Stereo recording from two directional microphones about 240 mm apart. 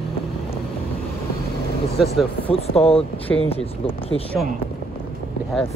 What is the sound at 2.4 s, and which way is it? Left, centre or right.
Speech, left.